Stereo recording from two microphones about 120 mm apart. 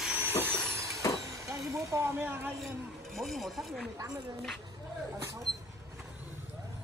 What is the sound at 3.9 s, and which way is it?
Speech, 30° right (ahead or behind).